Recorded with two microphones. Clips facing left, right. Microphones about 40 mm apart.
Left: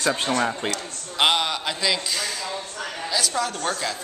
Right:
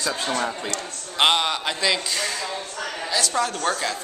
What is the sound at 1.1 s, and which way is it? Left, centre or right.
A man's voice, centre.